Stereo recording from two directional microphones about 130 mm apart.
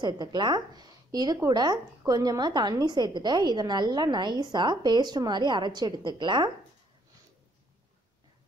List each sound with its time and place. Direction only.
0.0 s speech: 35° right (ahead or behind)